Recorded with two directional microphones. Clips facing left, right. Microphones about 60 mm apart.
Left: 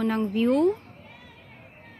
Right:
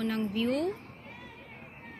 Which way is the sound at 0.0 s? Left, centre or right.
Left.